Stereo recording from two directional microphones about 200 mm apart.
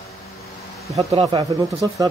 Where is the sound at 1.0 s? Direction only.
30° right (ahead or behind).